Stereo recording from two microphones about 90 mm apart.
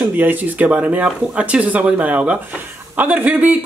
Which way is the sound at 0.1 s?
20° right (ahead or behind).